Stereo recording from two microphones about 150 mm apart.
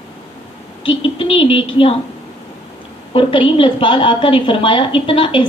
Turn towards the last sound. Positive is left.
turn(degrees=35)  # may be behind; listen again after turning